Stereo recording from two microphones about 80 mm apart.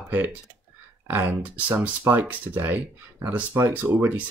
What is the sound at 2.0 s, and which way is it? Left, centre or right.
Speech, right.